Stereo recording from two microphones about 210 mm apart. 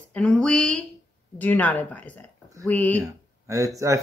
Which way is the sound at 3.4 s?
15° right (ahead or behind).